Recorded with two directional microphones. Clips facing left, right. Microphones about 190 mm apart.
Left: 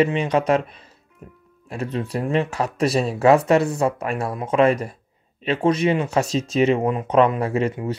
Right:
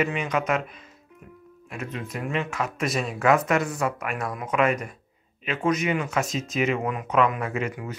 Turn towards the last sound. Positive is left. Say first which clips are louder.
# left 7 dB
turn(degrees=30)  # may be behind; listen again after turning